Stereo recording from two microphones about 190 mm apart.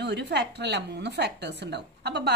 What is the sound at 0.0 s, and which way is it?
Speech, 60° right (ahead or behind).